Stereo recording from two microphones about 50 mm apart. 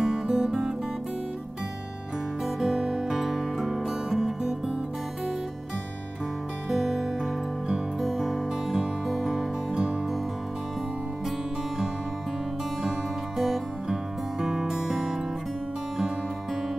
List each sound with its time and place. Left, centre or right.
0.0 s music: centre
2.4 s music: centre
6.7 s music: centre
9.7 s music: centre
13.4 s music: centre